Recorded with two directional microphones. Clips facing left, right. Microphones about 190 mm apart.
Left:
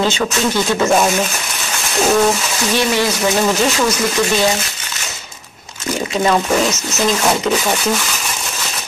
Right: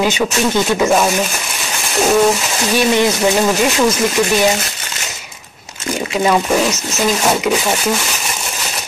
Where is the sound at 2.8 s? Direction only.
20° right (ahead or behind).